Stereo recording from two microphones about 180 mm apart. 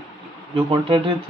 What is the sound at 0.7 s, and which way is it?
Speech, 30° right (ahead or behind).